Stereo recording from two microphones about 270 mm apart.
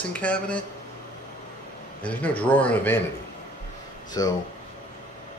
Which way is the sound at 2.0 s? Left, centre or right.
Centre.